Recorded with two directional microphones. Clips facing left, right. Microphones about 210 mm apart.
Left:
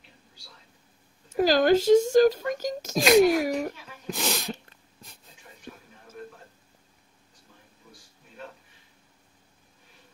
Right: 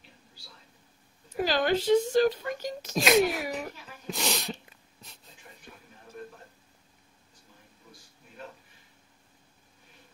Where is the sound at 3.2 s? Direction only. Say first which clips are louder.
Left 8 dB; 45° left (ahead or behind).